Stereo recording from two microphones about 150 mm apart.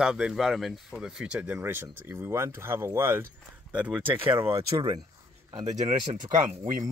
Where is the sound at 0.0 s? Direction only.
5° right (ahead or behind); by 5.0 s 25° right (ahead or behind).